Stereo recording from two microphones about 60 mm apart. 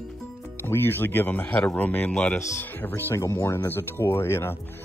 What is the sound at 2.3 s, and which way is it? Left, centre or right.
Speech, left.